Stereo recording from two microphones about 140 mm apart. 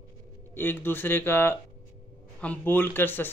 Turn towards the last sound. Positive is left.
turn(degrees=15)  # may be behind; listen again after turning